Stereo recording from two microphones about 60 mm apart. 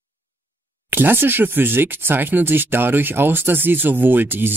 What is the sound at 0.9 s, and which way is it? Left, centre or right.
Speech, right.